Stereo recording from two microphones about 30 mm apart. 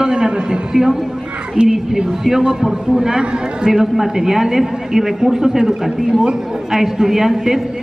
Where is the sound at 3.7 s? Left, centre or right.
Centre.